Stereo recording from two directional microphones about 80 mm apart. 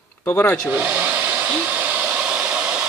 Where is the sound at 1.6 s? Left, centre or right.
Centre.